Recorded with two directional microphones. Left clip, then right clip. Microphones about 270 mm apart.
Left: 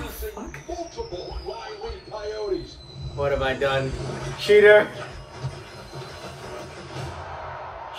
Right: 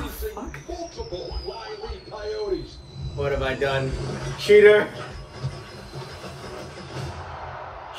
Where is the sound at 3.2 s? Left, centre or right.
Centre.